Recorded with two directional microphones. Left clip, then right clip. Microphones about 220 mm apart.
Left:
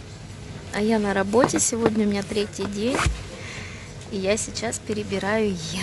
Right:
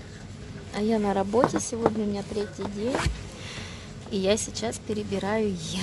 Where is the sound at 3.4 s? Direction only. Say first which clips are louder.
Even; 15° right (ahead or behind).